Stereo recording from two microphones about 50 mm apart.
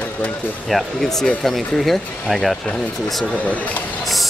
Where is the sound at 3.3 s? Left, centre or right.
Left.